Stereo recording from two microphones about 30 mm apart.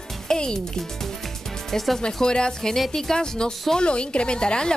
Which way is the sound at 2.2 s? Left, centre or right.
Left.